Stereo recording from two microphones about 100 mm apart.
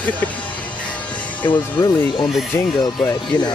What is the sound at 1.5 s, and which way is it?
Speech, 50° left (ahead or behind).